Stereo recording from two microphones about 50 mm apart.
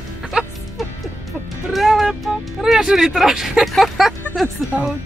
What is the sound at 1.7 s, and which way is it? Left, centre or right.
Music, centre.